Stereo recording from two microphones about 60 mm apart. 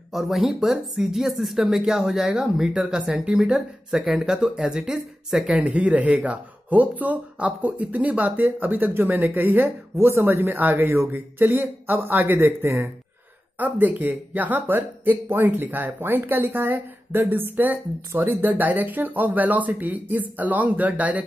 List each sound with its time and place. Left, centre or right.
0.1 s speech: centre
5.6 s speech: right
9.9 s speech: right
13.6 s speech: right